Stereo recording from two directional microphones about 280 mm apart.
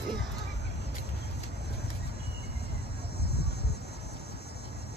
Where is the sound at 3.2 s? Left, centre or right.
Left.